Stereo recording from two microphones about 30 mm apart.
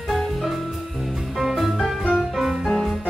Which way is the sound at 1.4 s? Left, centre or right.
Centre.